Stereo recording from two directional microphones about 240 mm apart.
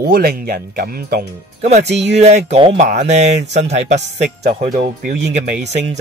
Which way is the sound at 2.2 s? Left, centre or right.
Right.